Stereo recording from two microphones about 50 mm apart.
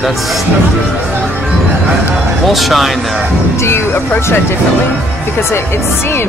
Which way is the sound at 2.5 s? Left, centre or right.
Centre.